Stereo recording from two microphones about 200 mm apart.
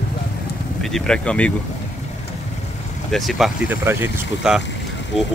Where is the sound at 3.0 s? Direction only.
Centre (ahead or behind).